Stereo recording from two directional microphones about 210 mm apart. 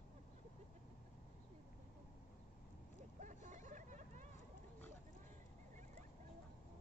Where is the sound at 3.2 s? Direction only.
35° right (ahead or behind).